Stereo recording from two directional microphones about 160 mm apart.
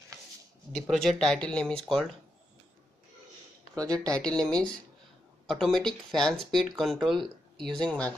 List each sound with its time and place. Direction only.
0.7 s speech: centre (ahead or behind)
3.7 s speech: 20° right (ahead or behind)
4.2 s speech: 5° left (ahead or behind)